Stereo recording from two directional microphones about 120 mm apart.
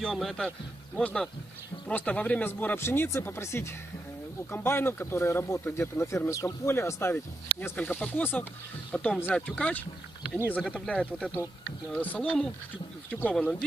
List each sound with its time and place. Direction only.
0.0 s speech: centre (ahead or behind)
10.9 s speech: 10° left (ahead or behind)